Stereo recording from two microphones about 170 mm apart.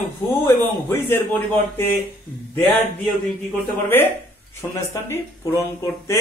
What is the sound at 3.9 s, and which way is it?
Speech, 10° left (ahead or behind).